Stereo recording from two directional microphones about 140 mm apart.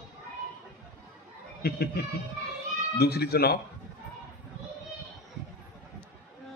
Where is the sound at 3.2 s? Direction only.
90° left.